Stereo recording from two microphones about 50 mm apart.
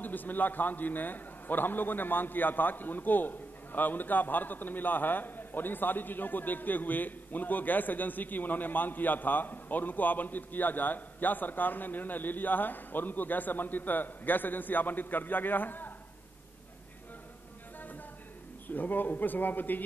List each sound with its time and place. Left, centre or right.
0.0 s a man's voice: left
18.7 s a man's voice: left